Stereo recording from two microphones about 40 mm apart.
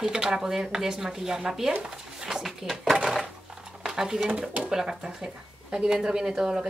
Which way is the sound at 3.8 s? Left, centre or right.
Centre.